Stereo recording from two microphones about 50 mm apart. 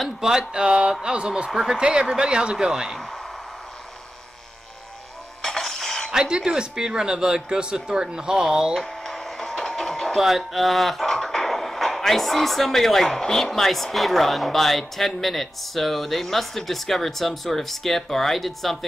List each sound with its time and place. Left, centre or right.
0.2 s speech: centre
1.5 s speech: centre
1.8 s speech: centre
5.4 s printer: centre
6.1 s speech: centre
8.7 s a sound: centre
10.2 s speech: centre